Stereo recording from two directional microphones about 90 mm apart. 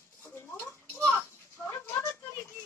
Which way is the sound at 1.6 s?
25° left (ahead or behind).